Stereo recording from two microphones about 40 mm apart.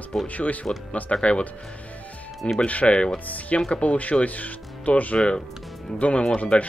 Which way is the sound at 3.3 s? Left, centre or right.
Left.